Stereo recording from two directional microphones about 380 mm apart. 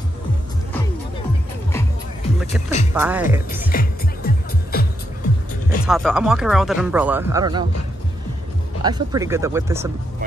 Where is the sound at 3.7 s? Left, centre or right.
Left.